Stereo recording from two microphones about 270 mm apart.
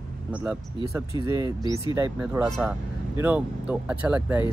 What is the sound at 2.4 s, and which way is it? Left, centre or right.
Speech, centre.